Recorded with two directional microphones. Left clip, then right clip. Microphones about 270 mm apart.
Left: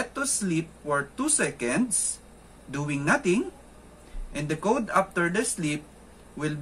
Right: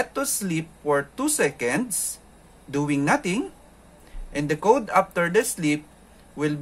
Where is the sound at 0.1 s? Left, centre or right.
Right.